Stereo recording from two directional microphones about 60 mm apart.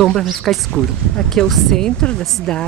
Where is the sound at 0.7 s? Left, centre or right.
Centre.